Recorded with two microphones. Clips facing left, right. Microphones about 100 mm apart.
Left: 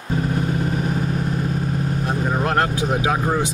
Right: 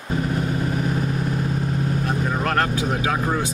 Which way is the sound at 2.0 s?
20° left (ahead or behind).